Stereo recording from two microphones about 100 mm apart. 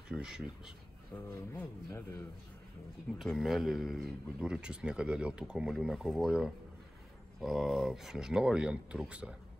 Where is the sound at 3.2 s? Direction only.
Centre (ahead or behind).